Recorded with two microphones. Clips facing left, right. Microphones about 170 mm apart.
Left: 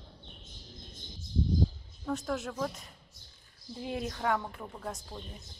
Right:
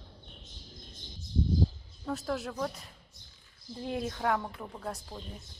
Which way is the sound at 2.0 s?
Centre (ahead or behind).